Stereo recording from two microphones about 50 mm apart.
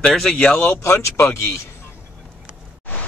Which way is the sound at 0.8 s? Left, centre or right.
Left.